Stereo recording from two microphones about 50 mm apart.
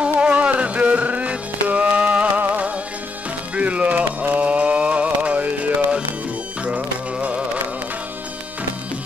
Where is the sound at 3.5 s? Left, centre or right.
Right.